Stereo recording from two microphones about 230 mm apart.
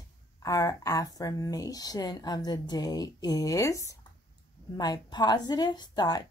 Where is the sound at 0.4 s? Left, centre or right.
Centre.